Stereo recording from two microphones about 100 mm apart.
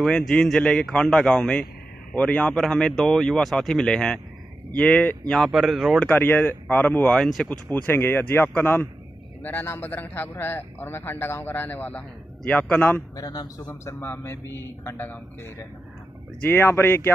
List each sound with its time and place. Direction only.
0.0 s a man's voice: 5° left (ahead or behind)
5.3 s speech: centre (ahead or behind)
6.0 s a man's voice: 20° left (ahead or behind)
7.7 s a man's voice: 20° left (ahead or behind)
13.1 s a man's voice: 40° left (ahead or behind)
13.8 s a man's voice: 25° left (ahead or behind)